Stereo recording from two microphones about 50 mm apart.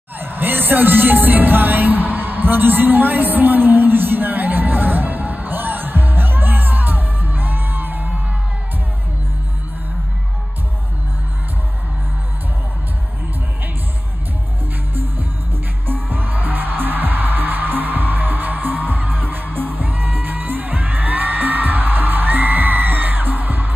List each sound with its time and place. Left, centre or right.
0.2 s music: right
15.9 s music: right